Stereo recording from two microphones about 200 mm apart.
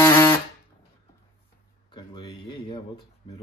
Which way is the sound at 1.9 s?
25° left (ahead or behind).